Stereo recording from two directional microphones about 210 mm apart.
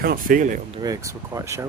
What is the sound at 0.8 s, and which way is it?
Speech, 15° right (ahead or behind).